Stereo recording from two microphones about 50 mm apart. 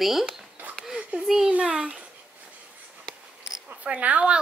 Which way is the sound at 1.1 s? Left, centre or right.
Right.